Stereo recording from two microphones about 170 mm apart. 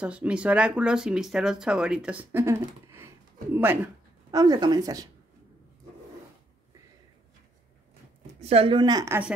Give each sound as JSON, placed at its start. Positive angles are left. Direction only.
{"t": 0.0, "sound": "speech", "side_deg": -5}
{"t": 8.4, "sound": "speech", "side_deg": -35}